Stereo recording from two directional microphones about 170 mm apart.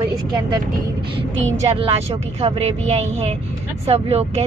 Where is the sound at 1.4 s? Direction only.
35° right (ahead or behind).